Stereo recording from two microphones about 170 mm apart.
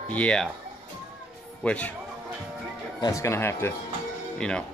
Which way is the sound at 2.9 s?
20° left (ahead or behind).